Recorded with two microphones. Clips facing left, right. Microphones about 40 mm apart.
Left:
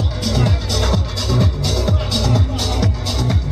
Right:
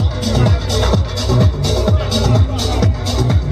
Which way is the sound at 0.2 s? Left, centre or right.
Centre.